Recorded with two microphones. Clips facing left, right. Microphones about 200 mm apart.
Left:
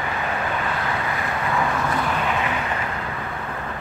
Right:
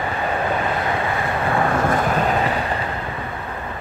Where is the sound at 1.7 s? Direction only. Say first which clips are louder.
Right 5 dB; 50° right (ahead or behind).